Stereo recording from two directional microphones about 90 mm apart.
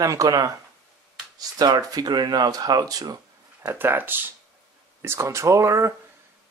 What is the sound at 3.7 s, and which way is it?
Speech, 25° right (ahead or behind).